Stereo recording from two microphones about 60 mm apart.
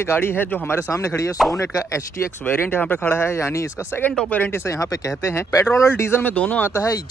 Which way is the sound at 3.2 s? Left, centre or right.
Left.